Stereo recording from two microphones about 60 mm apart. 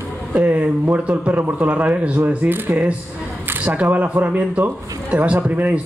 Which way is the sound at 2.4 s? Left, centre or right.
Right.